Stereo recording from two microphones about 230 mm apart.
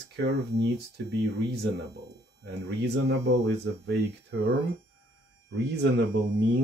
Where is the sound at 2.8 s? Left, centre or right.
Right.